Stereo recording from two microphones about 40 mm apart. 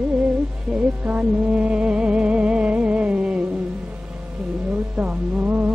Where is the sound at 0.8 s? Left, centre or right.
Right.